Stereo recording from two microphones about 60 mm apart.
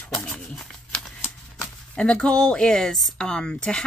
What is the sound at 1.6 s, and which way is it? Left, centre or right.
Speech, centre.